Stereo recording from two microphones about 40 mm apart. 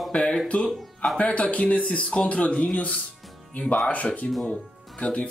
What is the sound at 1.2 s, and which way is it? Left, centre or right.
Speech, left.